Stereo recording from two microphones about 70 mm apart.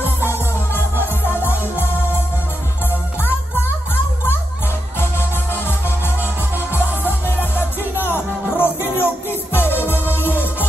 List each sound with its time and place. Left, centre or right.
1.0 s music: left
3.2 s music: left
5.5 s music: left